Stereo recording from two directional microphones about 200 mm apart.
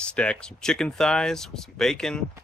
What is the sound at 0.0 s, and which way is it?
Speech, 5° left (ahead or behind).